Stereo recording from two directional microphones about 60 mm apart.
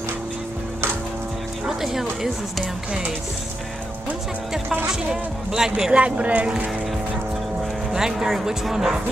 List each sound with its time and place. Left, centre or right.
1.7 s speech: centre
4.8 s speech: centre
7.9 s speech: centre